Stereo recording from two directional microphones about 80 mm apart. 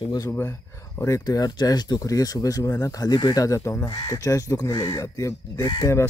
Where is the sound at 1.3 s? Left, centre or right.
Left.